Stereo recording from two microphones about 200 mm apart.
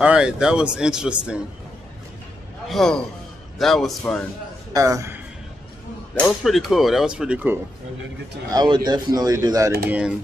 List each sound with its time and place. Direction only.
0.0 s speech: 5° right (ahead or behind)
2.7 s speech: centre (ahead or behind)
4.7 s a man's voice: 15° right (ahead or behind)
6.1 s speech: centre (ahead or behind)
8.5 s speech: 20° right (ahead or behind)
9.8 s speech: 5° right (ahead or behind)